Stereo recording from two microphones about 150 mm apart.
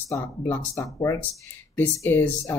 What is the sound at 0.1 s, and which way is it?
Speech, 20° left (ahead or behind).